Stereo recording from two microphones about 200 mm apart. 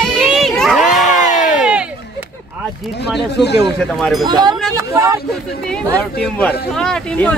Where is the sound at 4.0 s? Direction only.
Centre (ahead or behind).